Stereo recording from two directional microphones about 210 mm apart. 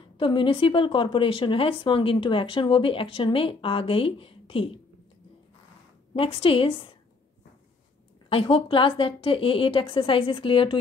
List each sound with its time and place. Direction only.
0.2 s speech: 25° left (ahead or behind)
6.1 s speech: 25° left (ahead or behind)
8.3 s speech: 25° left (ahead or behind)